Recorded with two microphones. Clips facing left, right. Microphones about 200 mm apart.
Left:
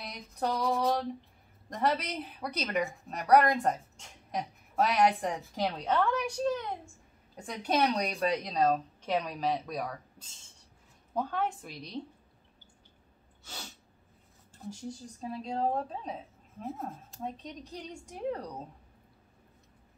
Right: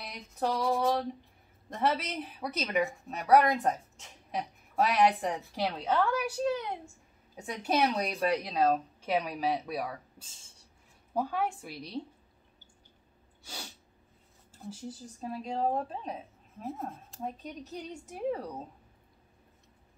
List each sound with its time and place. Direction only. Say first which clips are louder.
0.0 s a woman's voice: right 1 dB; centre (ahead or behind)
13.4 s sneeze: right 1 dB; 10° right (ahead or behind)
14.6 s a woman's voice: left 1 dB; 5° right (ahead or behind)